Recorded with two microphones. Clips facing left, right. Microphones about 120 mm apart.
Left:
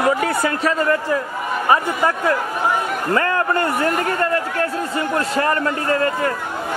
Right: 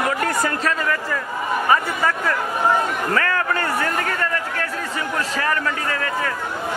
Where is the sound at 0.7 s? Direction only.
30° left (ahead or behind).